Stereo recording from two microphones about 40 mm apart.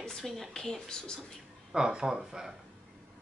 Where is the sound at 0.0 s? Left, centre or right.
Centre.